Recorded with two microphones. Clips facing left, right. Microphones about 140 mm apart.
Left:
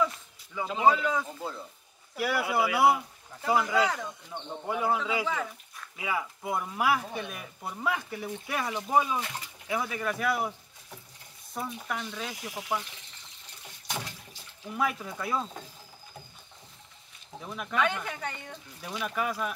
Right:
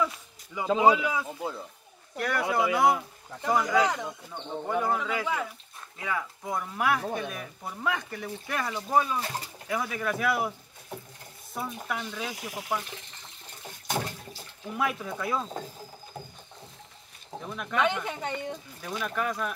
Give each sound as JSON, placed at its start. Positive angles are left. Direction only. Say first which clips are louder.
{"t": 0.6, "sound": "speech", "louder": "right 2 dB", "side_deg": -10}
{"t": 2.1, "sound": "speech", "louder": "right 1 dB", "side_deg": 5}
{"t": 3.9, "sound": "speech", "louder": "right 2 dB", "side_deg": -15}
{"t": 4.6, "sound": "speech", "louder": "even", "side_deg": 5}
{"t": 5.2, "sound": "speech", "louder": "right 1 dB", "side_deg": -5}
{"t": 5.9, "sound": "speech", "louder": "even", "side_deg": 10}
{"t": 9.2, "sound": "speech", "louder": "right 3 dB", "side_deg": -35}
{"t": 9.7, "sound": "speech", "louder": "right 1 dB", "side_deg": 0}
{"t": 11.5, "sound": "speech", "louder": "right 1 dB", "side_deg": 0}
{"t": 13.7, "sound": "water", "louder": "right 6 dB", "side_deg": -50}
{"t": 14.8, "sound": "speech", "louder": "right 1 dB", "side_deg": 0}
{"t": 17.5, "sound": "speech", "louder": "even", "side_deg": 0}
{"t": 17.7, "sound": "speech", "louder": "right 2 dB", "side_deg": -20}
{"t": 18.8, "sound": "speech", "louder": "even", "side_deg": 5}